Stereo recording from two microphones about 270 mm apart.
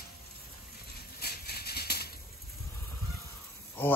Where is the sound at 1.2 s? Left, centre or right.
Left.